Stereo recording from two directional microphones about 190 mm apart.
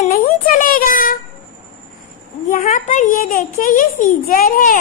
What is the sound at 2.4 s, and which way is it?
A woman's voice, 45° left (ahead or behind).